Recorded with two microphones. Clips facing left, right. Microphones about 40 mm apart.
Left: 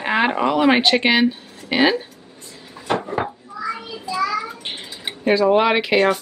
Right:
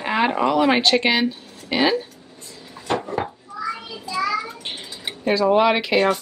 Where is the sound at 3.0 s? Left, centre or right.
Centre.